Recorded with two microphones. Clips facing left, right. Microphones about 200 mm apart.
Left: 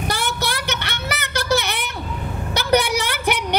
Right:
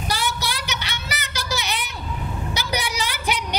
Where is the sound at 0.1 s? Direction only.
55° left (ahead or behind).